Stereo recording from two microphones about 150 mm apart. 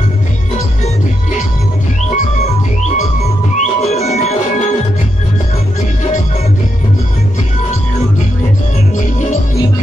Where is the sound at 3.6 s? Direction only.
45° left (ahead or behind).